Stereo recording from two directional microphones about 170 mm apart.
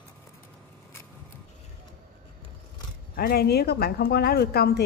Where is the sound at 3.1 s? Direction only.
65° left (ahead or behind).